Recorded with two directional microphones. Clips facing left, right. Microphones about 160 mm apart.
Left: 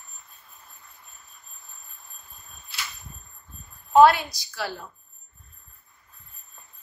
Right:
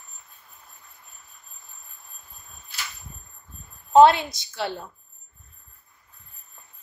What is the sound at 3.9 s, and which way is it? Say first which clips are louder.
Speech: right 1 dB; 25° right (ahead or behind).